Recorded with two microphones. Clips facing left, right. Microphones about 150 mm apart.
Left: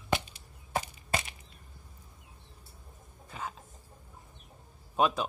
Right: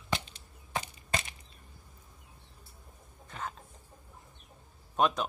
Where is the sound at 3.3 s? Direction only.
5° left (ahead or behind).